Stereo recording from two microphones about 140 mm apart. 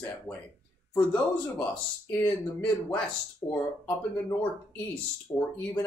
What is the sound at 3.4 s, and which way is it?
Speech, 10° left (ahead or behind).